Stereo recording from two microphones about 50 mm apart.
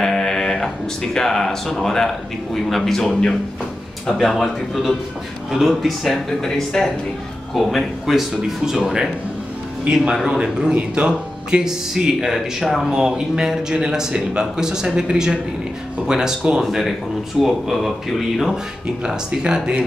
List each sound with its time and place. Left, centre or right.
0.0 s sheep: centre
1.1 s speech: centre
4.2 s speech: centre
6.4 s speech: centre
16.6 s speech: centre
19.0 s speech: centre